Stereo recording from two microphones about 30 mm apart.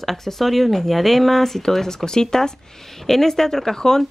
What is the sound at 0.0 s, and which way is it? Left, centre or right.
Speech, centre.